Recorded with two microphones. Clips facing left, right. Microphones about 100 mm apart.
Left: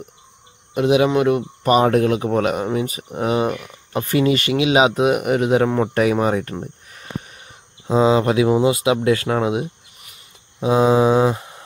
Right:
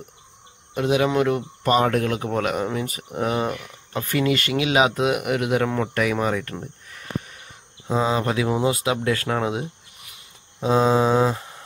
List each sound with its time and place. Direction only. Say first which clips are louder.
0.7 s speech: left 4 dB; 15° left (ahead or behind)
6.5 s cricket: left 4 dB; 20° left (ahead or behind)
7.9 s speech: left 6 dB; 20° left (ahead or behind)
10.6 s mantra: left 3 dB; 10° left (ahead or behind)